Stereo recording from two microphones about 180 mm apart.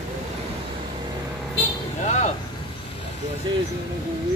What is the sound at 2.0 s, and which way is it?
Vehicle, 40° left (ahead or behind).